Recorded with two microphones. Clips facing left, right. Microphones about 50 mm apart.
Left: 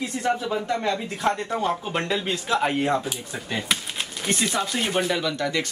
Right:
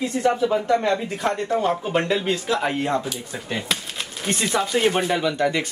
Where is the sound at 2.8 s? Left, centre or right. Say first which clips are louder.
Even; left.